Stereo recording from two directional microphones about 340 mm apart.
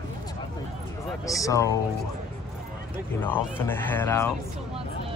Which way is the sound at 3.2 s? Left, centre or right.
Centre.